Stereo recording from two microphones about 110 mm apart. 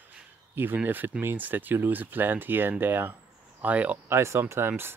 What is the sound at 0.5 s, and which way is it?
Speech, 20° right (ahead or behind).